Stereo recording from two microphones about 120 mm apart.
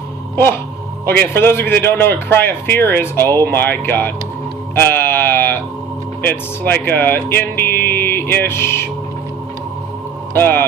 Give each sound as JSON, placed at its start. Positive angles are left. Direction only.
{"t": 1.0, "sound": "speech", "side_deg": 15}
{"t": 10.3, "sound": "speech", "side_deg": 20}